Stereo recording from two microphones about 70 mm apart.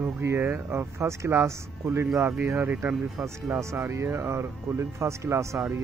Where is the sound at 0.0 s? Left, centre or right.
Right.